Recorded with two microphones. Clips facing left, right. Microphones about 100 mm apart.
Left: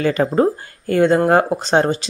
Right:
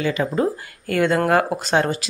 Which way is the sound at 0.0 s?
45° left (ahead or behind).